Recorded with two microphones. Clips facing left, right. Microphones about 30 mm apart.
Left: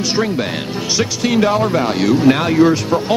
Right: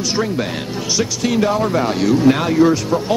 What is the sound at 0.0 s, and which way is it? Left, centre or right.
Speech, centre.